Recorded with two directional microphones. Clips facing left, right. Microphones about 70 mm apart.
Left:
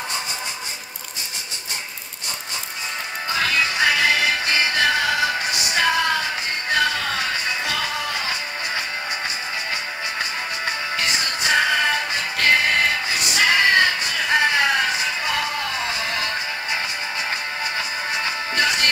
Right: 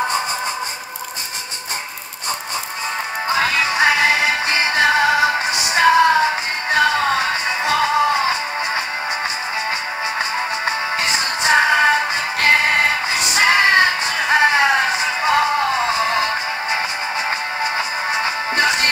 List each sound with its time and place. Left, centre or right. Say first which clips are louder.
3.3 s music: right 3 dB; right
10.6 s music: right 4 dB; right
17.7 s music: right 5 dB; right